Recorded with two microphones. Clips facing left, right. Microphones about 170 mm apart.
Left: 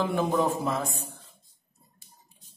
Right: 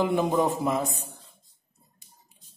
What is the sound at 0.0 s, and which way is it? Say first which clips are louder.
Speech: right 2 dB; 20° right (ahead or behind).